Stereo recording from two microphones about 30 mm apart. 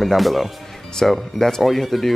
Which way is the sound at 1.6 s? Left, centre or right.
Centre.